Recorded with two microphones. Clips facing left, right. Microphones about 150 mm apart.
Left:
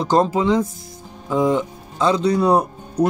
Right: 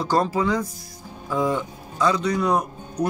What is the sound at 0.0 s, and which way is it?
Speech, 20° left (ahead or behind).